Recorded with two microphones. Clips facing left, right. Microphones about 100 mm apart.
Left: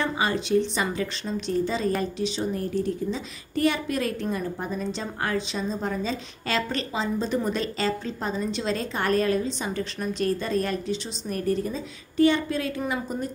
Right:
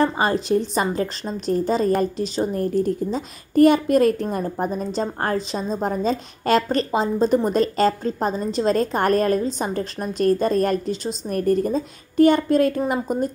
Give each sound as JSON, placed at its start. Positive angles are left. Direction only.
{"t": 0.0, "sound": "a woman's voice", "side_deg": -40}